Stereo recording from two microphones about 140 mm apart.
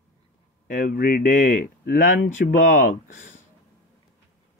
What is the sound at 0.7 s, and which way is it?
Speech, 75° left (ahead or behind).